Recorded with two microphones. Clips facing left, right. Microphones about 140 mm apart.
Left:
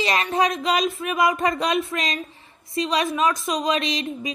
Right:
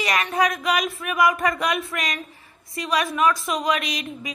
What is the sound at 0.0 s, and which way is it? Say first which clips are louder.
A woman's voice: left 1 dB; 25° left (ahead or behind).